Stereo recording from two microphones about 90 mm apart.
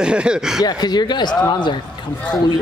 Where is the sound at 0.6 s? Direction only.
45° left (ahead or behind).